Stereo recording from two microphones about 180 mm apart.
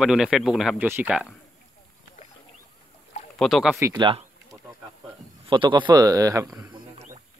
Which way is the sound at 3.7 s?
15° right (ahead or behind).